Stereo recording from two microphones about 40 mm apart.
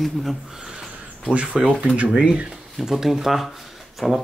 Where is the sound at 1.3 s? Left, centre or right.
Right.